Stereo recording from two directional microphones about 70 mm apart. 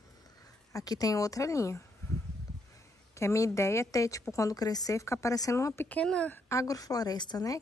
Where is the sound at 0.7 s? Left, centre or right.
Left.